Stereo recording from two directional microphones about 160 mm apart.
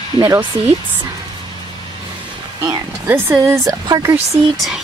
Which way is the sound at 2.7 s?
15° right (ahead or behind).